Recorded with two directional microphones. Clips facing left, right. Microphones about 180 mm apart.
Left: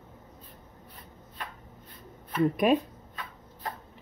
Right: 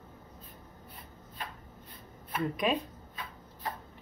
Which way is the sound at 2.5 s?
50° left (ahead or behind).